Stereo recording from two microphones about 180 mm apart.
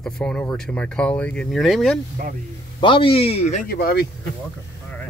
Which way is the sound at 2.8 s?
30° left (ahead or behind).